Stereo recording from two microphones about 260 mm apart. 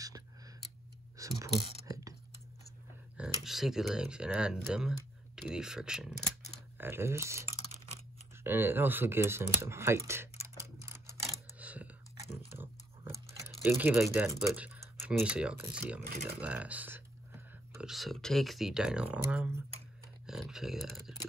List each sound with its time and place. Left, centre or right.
1.1 s a sound: centre
3.4 s speech: centre
8.5 s speech: centre
11.2 s a sound: centre
13.5 s speech: centre
16.1 s speech: right
16.3 s speech: centre
20.2 s typing: centre